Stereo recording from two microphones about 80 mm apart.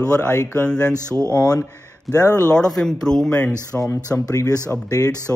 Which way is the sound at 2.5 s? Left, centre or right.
Centre.